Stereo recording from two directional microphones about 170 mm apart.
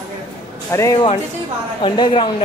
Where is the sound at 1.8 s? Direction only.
30° left (ahead or behind).